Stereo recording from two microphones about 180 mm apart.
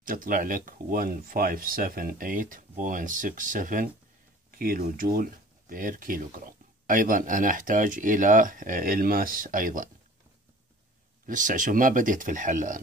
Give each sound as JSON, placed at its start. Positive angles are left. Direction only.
{"t": 0.0, "sound": "speech", "side_deg": -50}
{"t": 11.2, "sound": "speech", "side_deg": -45}